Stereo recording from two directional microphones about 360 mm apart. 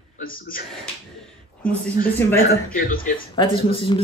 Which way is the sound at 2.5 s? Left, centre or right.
Left.